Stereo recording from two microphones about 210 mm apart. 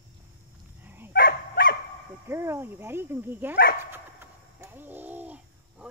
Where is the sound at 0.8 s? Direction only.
10° right (ahead or behind).